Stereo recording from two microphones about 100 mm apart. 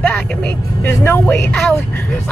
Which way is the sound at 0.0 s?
15° left (ahead or behind).